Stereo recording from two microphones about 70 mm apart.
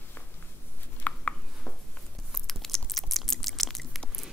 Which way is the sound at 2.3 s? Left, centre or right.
Centre.